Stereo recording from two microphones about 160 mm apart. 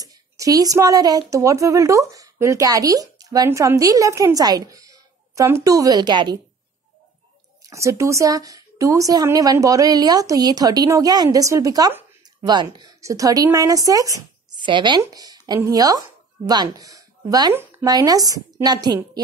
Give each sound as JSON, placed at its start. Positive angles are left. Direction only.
{"t": 0.0, "sound": "speech", "side_deg": -20}
{"t": 7.7, "sound": "speech", "side_deg": -20}